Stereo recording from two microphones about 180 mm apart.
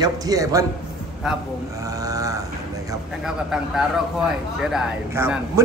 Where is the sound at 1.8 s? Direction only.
20° right (ahead or behind).